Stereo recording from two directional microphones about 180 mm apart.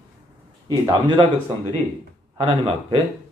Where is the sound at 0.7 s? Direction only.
25° right (ahead or behind).